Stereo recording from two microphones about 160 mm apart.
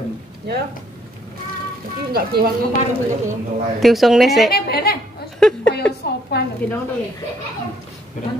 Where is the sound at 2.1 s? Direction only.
75° right (ahead or behind).